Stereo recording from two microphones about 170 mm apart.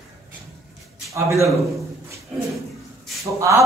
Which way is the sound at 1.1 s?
20° right (ahead or behind).